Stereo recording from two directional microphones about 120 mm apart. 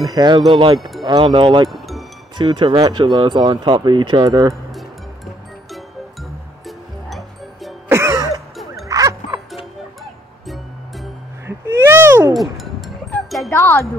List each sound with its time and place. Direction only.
0.1 s speech: 35° right (ahead or behind)
0.5 s speech: 45° right (ahead or behind)
0.7 s speech: centre (ahead or behind)
1.0 s speech: 40° right (ahead or behind)
1.7 s music: centre (ahead or behind)
2.3 s speech: 40° right (ahead or behind)
4.7 s music: centre (ahead or behind)
7.9 s throat clearing: 25° right (ahead or behind)
8.8 s music: 30° right (ahead or behind)
10.4 s music: centre (ahead or behind)
11.4 s a sound: 20° right (ahead or behind)
12.4 s music: centre (ahead or behind)
13.5 s music: 20° left (ahead or behind)